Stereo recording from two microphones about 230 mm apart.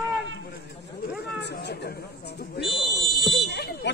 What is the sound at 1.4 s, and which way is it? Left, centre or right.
Chatter, left.